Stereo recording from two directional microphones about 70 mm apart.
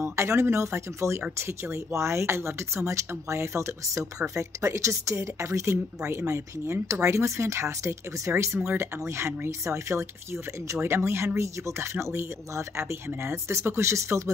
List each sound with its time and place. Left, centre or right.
0.0 s speech: right